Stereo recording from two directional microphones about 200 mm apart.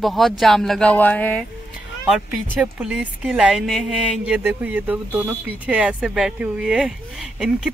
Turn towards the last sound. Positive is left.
turn(degrees=-5)  # may be behind; listen again after turning